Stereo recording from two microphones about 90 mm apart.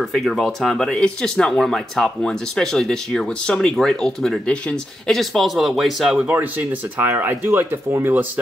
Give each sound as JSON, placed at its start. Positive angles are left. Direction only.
{"t": 0.0, "sound": "speech", "side_deg": 5}
{"t": 6.3, "sound": "speech", "side_deg": -20}